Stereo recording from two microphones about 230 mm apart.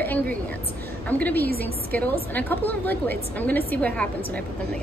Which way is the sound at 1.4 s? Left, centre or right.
Right.